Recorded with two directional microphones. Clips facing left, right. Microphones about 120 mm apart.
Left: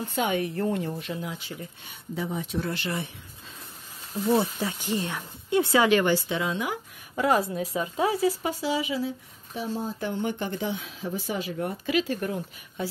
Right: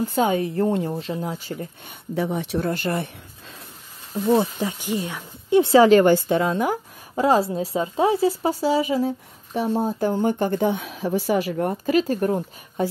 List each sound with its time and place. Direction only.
0.0 s speech: 35° right (ahead or behind)
2.1 s speech: 75° right (ahead or behind)
2.6 s a woman's voice: 50° right (ahead or behind)
4.3 s speech: 20° right (ahead or behind)
5.5 s a woman's voice: 25° right (ahead or behind); by 6.8 s 45° right (ahead or behind)
7.2 s a woman's voice: 30° right (ahead or behind)
9.5 s speech: 65° right (ahead or behind)
9.9 s speech: 40° right (ahead or behind); by 11.6 s 65° right (ahead or behind)
11.6 s speech: 45° right (ahead or behind)